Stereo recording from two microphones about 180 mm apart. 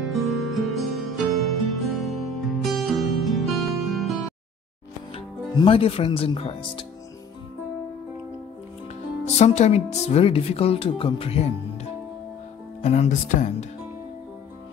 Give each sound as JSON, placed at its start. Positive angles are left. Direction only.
{"t": 0.0, "sound": "music", "side_deg": 0}
{"t": 5.1, "sound": "speech", "side_deg": 30}
{"t": 9.4, "sound": "speech", "side_deg": 40}